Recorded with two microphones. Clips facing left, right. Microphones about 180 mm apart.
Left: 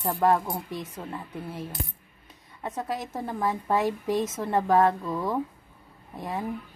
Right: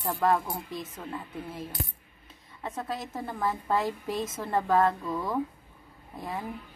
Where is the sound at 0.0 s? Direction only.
15° left (ahead or behind).